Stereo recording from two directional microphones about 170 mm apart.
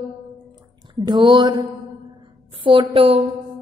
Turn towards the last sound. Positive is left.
turn(degrees=-35)  # may be behind; listen again after turning